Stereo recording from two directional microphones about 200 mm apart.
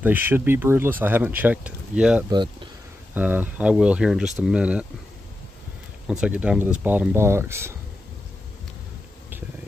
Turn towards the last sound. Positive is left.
turn(degrees=-10)  # may be behind; listen again after turning